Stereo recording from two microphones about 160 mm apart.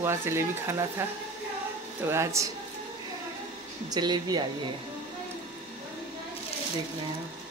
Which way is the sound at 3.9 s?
25° right (ahead or behind).